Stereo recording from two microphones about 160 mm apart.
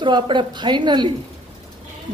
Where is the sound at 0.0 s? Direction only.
30° right (ahead or behind).